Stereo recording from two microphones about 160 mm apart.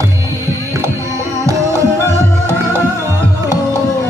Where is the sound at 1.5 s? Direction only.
20° right (ahead or behind).